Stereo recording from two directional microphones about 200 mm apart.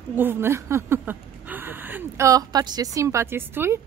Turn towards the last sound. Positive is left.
turn(degrees=-10)  # may be behind; listen again after turning